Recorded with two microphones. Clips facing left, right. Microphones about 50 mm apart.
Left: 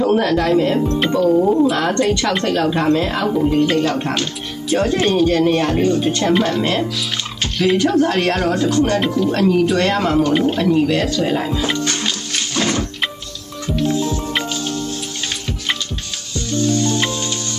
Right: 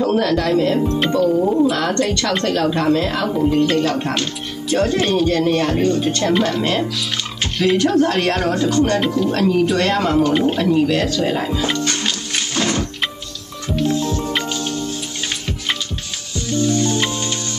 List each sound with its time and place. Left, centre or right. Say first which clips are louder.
0.0 s speech: left 1 dB; centre
1.8 s speech: left 2 dB; centre
12.5 s music: left 1 dB; centre
16.6 s music: left 1 dB; centre